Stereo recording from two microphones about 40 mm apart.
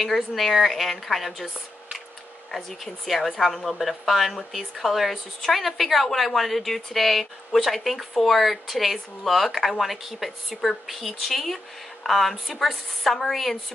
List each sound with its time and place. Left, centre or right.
0.0 s speech: centre
2.5 s speech: centre